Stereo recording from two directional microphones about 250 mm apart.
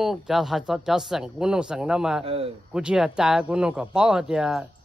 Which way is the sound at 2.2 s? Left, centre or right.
Right.